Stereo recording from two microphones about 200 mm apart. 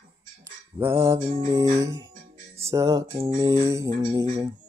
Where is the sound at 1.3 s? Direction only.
20° right (ahead or behind).